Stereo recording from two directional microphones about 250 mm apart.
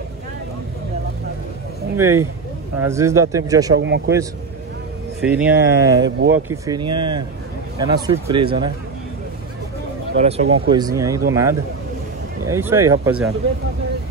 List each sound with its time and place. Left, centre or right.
2.0 s a man's voice: centre
3.8 s speech: right
5.2 s a man's voice: centre
6.0 s speech: right
6.5 s a man's voice: centre
10.1 s speech: right
10.7 s a man's voice: centre